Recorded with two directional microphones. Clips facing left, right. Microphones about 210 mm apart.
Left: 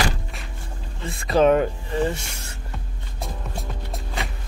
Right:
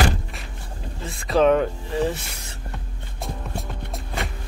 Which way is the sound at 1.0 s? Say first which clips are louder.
Left 1 dB; centre (ahead or behind).